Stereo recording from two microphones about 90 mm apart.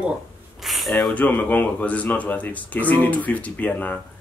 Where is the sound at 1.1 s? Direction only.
15° left (ahead or behind).